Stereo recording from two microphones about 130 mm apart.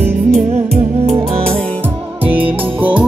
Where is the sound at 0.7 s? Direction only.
55° right (ahead or behind).